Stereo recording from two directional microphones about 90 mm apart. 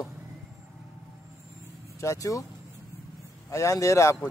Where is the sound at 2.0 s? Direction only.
35° left (ahead or behind).